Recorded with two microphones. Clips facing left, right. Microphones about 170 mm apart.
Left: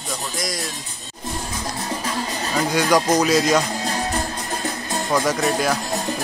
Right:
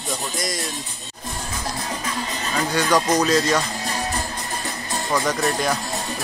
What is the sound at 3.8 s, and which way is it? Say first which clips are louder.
Music: left 3 dB; 65° left (ahead or behind).